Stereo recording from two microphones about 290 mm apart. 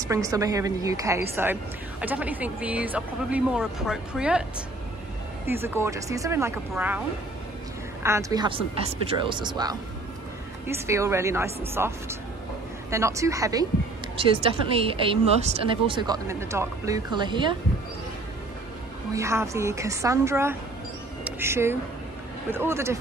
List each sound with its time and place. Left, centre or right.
0.0 s speech: centre
8.0 s speech: centre
19.1 s speech: centre
21.2 s mouse: centre
22.5 s speech: centre